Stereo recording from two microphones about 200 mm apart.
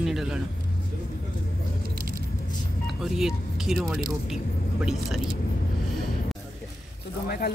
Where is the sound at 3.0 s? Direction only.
Centre (ahead or behind).